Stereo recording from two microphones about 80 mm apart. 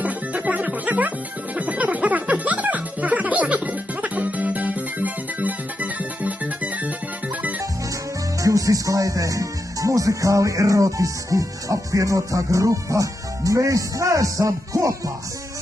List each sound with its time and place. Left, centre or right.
0.0 s music: centre
8.4 s music: right